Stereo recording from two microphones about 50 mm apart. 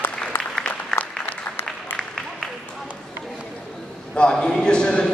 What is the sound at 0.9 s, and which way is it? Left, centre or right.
Applause, centre.